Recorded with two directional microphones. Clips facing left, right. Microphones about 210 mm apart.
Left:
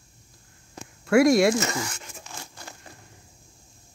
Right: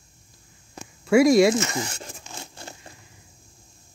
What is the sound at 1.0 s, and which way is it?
Speech, centre (ahead or behind).